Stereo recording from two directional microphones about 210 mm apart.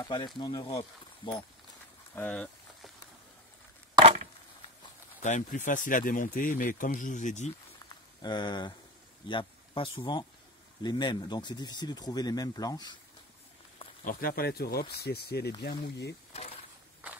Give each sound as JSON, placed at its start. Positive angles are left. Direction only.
{"t": 0.0, "sound": "speech", "side_deg": 20}
{"t": 2.1, "sound": "a sound", "side_deg": 5}
{"t": 5.2, "sound": "speech", "side_deg": 35}
{"t": 8.2, "sound": "speech", "side_deg": 20}
{"t": 14.0, "sound": "speech", "side_deg": 45}